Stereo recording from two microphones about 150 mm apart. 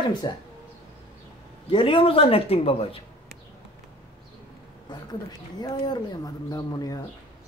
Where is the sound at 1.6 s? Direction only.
35° left (ahead or behind).